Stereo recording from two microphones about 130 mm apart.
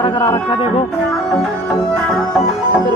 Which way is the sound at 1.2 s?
Centre (ahead or behind).